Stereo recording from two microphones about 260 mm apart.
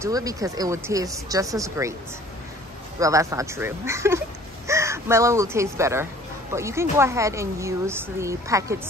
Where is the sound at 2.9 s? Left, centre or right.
Centre.